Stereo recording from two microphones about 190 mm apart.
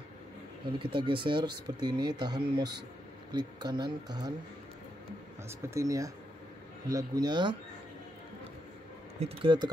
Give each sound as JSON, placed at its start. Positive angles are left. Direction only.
{"t": 0.7, "sound": "speech", "side_deg": -25}
{"t": 5.6, "sound": "speech", "side_deg": -15}
{"t": 9.2, "sound": "speech", "side_deg": -25}